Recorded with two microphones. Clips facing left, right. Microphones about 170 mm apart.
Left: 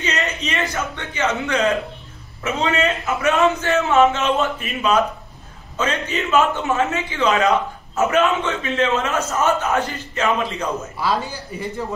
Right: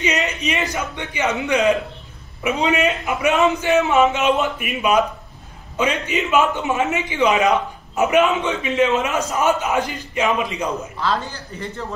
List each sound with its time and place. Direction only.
0.0 s a sound: 15° right (ahead or behind)
0.5 s a man's voice: 15° right (ahead or behind)
11.0 s a man's voice: 10° left (ahead or behind)